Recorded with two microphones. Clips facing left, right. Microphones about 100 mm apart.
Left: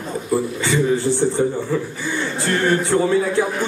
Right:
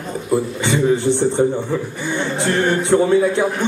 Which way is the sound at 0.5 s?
20° right (ahead or behind).